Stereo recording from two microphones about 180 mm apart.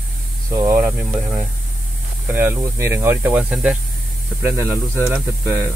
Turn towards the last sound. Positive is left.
turn(degrees=-15)  # may be behind; listen again after turning